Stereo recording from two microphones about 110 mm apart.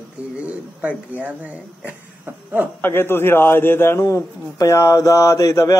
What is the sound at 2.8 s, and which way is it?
A man's voice, 20° left (ahead or behind).